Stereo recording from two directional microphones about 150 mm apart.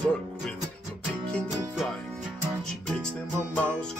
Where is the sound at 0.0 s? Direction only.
10° left (ahead or behind).